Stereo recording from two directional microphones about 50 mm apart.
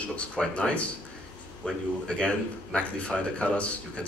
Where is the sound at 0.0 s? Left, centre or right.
Left.